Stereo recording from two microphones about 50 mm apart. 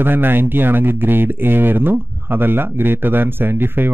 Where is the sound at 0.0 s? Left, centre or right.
Right.